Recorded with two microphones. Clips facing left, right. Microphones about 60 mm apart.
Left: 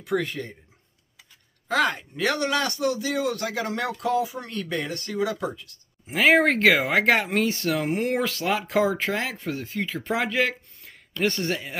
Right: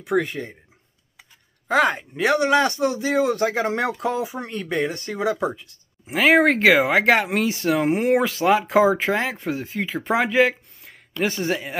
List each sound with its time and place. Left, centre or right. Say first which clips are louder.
0.0 s speech: right 4 dB; right
1.7 s speech: right 4 dB; right
6.0 s speech: right 2 dB; centre
7.8 s speech: right 8 dB; centre